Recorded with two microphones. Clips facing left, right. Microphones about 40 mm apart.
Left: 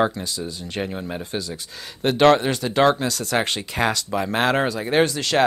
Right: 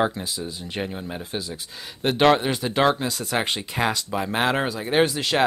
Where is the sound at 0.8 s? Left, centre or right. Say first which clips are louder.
Left 3 dB; centre.